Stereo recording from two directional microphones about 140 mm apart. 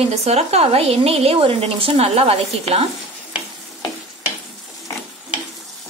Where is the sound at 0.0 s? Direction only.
50° right (ahead or behind).